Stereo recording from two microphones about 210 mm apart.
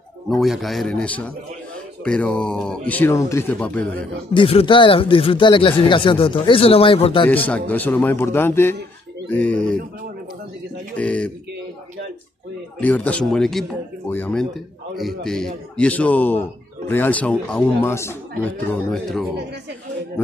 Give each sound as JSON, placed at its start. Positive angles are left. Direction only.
{"t": 0.3, "sound": "speech", "side_deg": 0}
{"t": 4.3, "sound": "speech", "side_deg": 25}
{"t": 7.2, "sound": "speech", "side_deg": 5}
{"t": 11.0, "sound": "speech", "side_deg": 5}
{"t": 12.8, "sound": "speech", "side_deg": 5}